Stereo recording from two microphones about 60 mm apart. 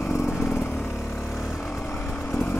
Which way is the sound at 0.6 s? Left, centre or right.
Left.